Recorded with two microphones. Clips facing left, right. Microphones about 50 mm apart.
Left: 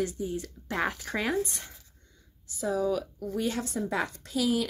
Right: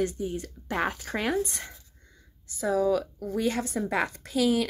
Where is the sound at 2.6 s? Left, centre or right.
Right.